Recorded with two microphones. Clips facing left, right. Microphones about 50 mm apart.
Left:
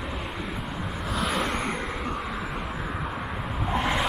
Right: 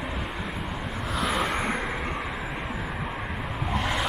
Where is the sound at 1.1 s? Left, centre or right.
Centre.